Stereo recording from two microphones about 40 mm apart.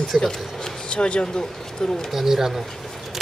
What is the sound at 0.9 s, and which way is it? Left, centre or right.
Speech, left.